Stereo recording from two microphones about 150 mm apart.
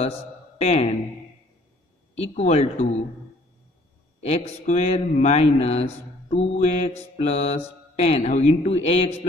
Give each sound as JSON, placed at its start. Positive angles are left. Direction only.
{"t": 0.6, "sound": "speech", "side_deg": 45}
{"t": 2.1, "sound": "speech", "side_deg": 45}
{"t": 4.2, "sound": "speech", "side_deg": 45}